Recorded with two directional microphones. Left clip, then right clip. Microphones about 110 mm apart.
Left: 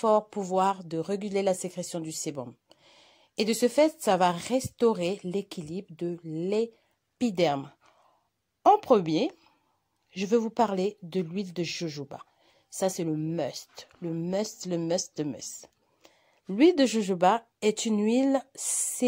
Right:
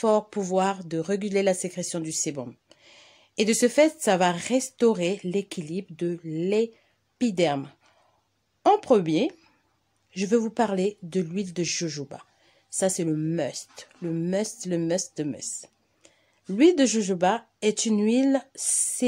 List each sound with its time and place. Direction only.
0.0 s speech: 10° left (ahead or behind)
13.4 s a woman's voice: 15° left (ahead or behind); by 19.0 s 30° left (ahead or behind)